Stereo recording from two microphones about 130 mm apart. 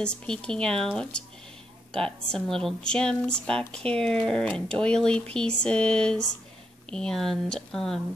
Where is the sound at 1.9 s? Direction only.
5° left (ahead or behind).